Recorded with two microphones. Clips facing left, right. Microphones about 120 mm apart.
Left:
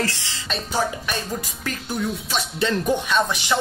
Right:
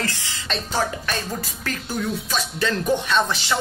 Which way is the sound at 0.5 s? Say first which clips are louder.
Even; 10° left (ahead or behind).